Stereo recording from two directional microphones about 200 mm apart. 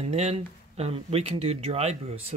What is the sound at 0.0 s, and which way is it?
Speech, 30° right (ahead or behind).